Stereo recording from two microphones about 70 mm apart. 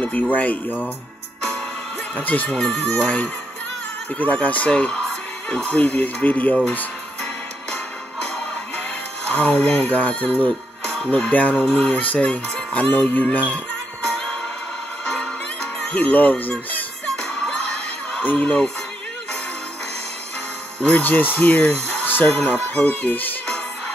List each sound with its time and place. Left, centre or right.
0.0 s speech: left
2.1 s speech: left
2.5 s speech: centre
4.2 s speech: left
9.3 s speech: centre
16.0 s speech: left
18.2 s speech: left
20.8 s speech: left